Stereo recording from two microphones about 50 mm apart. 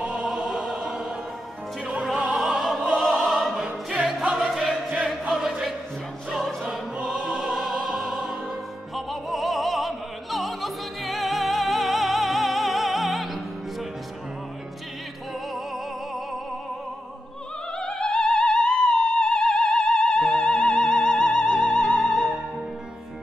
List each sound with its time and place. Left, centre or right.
0.0 s opera: centre
0.3 s music: centre
2.3 s opera: centre
4.4 s choir: centre
5.3 s music: centre
7.1 s music: centre
17.7 s music: centre